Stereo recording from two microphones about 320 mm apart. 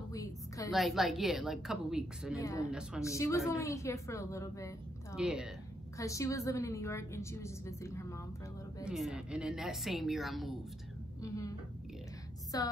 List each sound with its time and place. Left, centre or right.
0.1 s a sound: centre
0.7 s a woman's voice: centre
2.3 s a woman's voice: centre
5.1 s a woman's voice: centre
5.9 s a woman's voice: centre
8.8 s a woman's voice: centre
11.2 s a woman's voice: centre
12.5 s a woman's voice: centre